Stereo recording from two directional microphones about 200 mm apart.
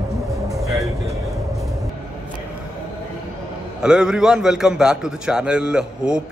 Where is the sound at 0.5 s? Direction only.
Centre (ahead or behind).